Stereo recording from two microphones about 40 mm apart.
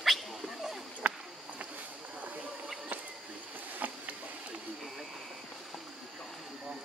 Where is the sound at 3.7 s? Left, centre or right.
Right.